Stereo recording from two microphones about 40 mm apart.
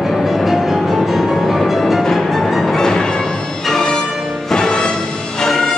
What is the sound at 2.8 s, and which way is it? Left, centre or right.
Music, centre.